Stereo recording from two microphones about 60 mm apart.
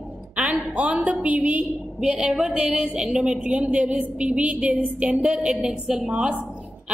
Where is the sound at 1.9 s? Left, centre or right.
Centre.